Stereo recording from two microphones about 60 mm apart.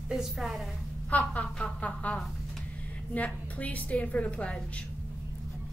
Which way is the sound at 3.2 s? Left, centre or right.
Left.